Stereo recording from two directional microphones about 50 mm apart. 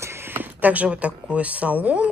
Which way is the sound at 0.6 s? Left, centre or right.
Right.